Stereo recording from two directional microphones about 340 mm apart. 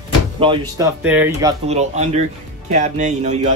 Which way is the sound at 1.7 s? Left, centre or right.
Centre.